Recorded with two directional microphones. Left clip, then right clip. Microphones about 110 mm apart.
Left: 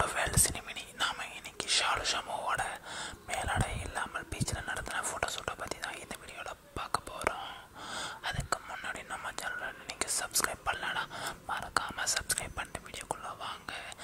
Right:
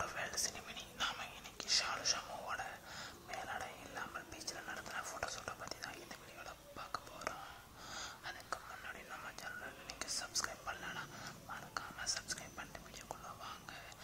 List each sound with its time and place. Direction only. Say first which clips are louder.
0.0 s whispering: left 10 dB; 40° left (ahead or behind)
7.9 s gasp: left 10 dB; 45° left (ahead or behind)
8.8 s whispering: left 10 dB; 50° left (ahead or behind)